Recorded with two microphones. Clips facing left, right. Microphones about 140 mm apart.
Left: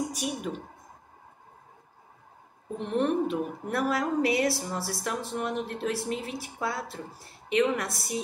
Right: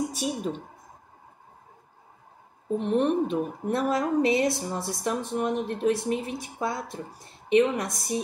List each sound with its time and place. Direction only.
0.1 s a woman's voice: 30° right (ahead or behind)
2.8 s speech: 20° right (ahead or behind)